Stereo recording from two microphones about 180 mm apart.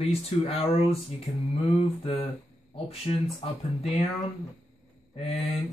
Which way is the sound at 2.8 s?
35° left (ahead or behind).